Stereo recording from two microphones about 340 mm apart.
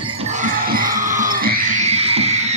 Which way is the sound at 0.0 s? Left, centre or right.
Centre.